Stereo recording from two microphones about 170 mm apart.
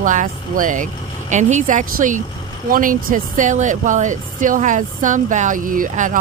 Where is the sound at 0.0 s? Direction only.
50° right (ahead or behind).